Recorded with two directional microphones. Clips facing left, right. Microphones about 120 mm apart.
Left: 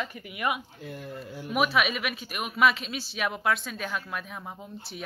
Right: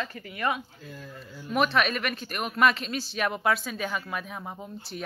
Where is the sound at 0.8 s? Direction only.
75° left (ahead or behind).